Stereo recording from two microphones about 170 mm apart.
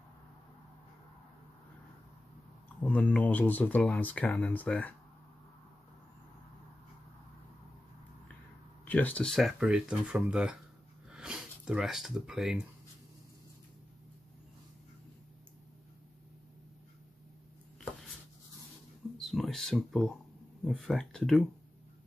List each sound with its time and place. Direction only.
2.8 s speech: 5° left (ahead or behind)
8.8 s speech: 10° left (ahead or behind)
19.1 s speech: centre (ahead or behind)